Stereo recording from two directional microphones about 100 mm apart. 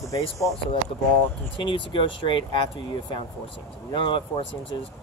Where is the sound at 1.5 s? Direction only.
55° left (ahead or behind).